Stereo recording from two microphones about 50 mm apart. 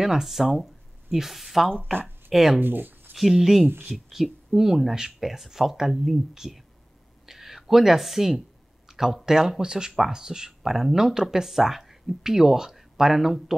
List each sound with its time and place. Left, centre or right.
0.0 s speech: centre
2.0 s a sound: right
2.3 s speech: centre
2.6 s speech: right
3.2 s speech: centre
7.2 s a sound: centre
8.8 s speech: centre